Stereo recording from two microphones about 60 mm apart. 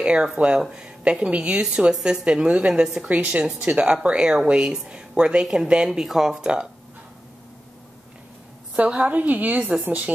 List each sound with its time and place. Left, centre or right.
0.0 s a woman's voice: centre
8.7 s a woman's voice: centre